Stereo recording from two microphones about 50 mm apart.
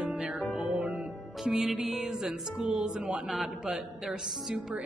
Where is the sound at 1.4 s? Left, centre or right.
Centre.